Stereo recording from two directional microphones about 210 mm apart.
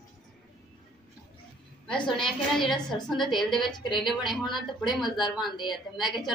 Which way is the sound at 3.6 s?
20° left (ahead or behind).